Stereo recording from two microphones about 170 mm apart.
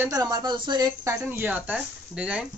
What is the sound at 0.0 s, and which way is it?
Speech, 20° right (ahead or behind).